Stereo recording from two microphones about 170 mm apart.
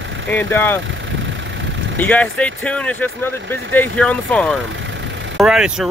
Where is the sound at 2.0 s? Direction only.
10° left (ahead or behind).